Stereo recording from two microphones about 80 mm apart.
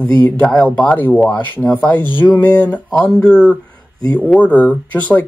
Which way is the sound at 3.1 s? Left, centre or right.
Centre.